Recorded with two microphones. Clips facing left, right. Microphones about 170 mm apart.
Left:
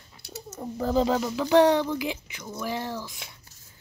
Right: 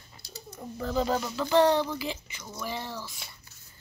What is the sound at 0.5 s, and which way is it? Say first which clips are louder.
Speech: left 5 dB; 40° left (ahead or behind).